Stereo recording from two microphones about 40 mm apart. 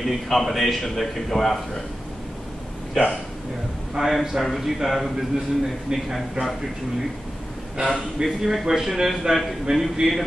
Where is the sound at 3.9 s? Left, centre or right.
Centre.